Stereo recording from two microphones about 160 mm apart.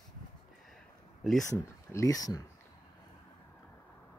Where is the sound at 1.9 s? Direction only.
20° left (ahead or behind).